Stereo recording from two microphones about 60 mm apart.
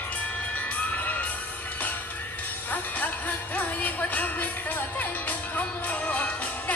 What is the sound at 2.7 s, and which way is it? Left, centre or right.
Music, left.